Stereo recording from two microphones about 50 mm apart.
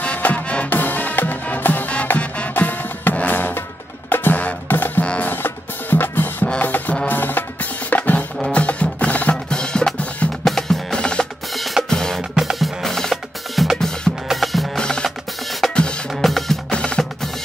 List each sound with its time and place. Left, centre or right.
0.0 s music: left
0.7 s music: left
2.0 s music: left
9.5 s percussion: centre
11.5 s drum: centre
11.9 s music: centre
12.2 s music: centre
14.3 s music: centre
14.8 s drum: centre
15.6 s music: centre
16.7 s percussion: left